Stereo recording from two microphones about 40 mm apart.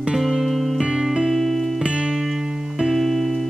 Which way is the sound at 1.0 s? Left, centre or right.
Centre.